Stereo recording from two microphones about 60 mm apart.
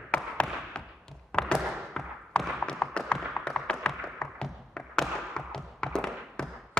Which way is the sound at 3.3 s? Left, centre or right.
Centre.